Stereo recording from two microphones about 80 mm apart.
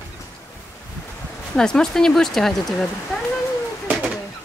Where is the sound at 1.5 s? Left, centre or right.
Centre.